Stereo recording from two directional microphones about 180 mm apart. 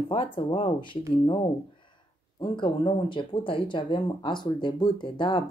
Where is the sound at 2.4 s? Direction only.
25° left (ahead or behind).